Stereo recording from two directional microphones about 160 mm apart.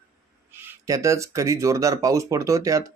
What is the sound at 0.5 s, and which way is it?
Speech, 15° right (ahead or behind).